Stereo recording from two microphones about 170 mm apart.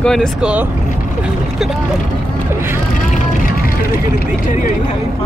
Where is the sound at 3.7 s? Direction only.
55° left (ahead or behind).